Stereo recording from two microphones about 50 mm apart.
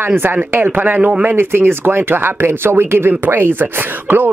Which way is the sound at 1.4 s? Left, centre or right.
Right.